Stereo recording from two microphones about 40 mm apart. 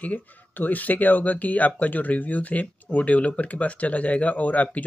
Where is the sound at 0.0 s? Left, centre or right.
Left.